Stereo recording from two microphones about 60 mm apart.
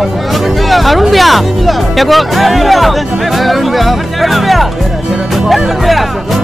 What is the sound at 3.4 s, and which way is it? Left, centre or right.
Speech, centre.